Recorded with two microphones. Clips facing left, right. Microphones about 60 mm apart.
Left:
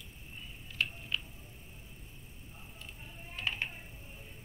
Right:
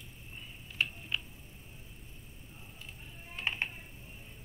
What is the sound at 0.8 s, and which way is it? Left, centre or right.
Tick-tock, centre.